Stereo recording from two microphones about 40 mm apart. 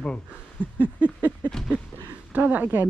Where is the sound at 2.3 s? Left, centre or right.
Right.